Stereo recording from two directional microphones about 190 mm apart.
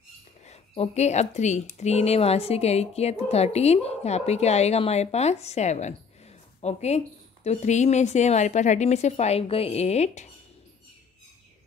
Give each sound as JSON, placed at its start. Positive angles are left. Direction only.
{"t": 0.5, "sound": "speech", "side_deg": 35}